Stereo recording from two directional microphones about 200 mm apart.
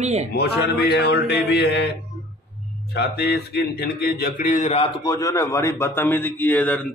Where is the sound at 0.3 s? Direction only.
55° left (ahead or behind).